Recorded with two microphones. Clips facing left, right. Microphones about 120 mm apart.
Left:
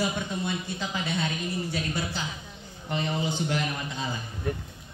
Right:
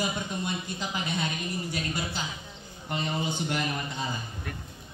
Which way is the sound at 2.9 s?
10° right (ahead or behind).